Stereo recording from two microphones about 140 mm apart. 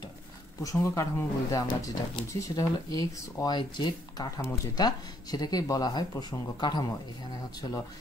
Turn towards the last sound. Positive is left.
turn(degrees=30)  # may be behind; listen again after turning